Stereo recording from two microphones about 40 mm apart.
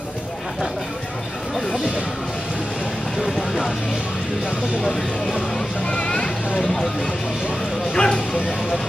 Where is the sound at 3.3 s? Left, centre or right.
Centre.